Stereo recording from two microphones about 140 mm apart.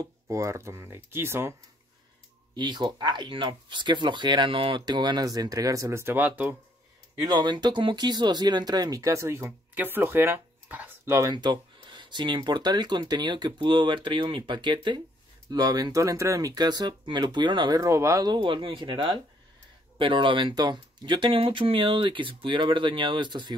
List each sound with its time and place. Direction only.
0.0 s speech: 20° right (ahead or behind)
2.5 s speech: 30° right (ahead or behind); by 6.5 s 10° right (ahead or behind)
7.2 s speech: 30° right (ahead or behind); by 11.1 s 15° right (ahead or behind)
11.1 s speech: 30° right (ahead or behind)